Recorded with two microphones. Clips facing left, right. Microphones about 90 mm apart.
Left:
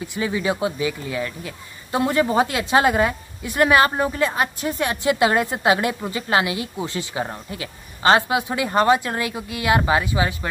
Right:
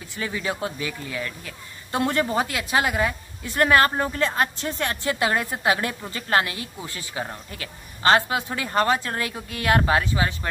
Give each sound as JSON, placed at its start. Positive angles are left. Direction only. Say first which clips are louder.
{"t": 0.0, "sound": "a woman's voice", "louder": "left 6 dB", "side_deg": 15}
{"t": 2.2, "sound": "speech", "louder": "left 5 dB", "side_deg": 20}
{"t": 3.4, "sound": "a woman's voice", "louder": "left 2 dB", "side_deg": 15}